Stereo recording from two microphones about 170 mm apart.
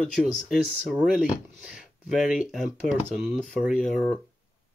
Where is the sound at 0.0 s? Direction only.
Centre (ahead or behind).